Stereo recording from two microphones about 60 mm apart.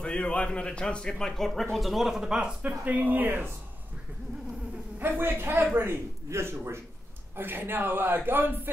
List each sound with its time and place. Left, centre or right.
0.0 s speech: centre
2.8 s a man's voice: right
4.9 s a man's voice: right